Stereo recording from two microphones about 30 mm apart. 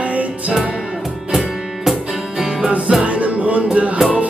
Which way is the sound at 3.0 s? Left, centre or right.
Right.